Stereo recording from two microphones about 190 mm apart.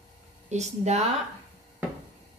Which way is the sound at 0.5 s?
35° right (ahead or behind).